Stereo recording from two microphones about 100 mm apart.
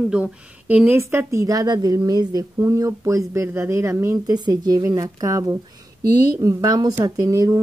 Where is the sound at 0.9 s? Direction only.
25° right (ahead or behind).